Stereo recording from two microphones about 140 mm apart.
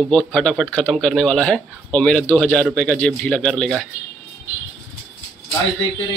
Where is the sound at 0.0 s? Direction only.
5° left (ahead or behind).